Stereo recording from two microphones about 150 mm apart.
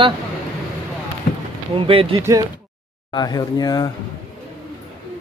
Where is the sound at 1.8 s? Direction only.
35° right (ahead or behind).